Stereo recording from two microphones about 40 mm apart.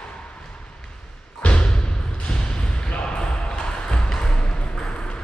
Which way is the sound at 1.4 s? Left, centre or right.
Left.